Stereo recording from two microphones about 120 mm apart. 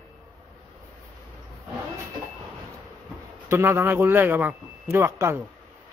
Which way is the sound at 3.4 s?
20° right (ahead or behind).